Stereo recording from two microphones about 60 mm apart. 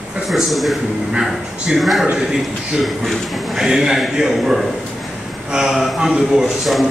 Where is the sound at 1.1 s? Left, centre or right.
Centre.